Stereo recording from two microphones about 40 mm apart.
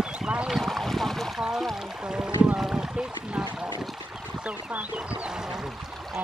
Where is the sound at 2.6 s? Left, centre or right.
Centre.